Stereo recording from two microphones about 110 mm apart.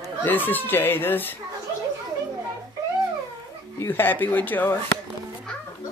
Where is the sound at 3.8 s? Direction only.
20° left (ahead or behind).